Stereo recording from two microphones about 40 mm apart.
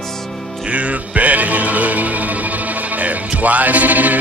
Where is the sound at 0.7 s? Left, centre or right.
Right.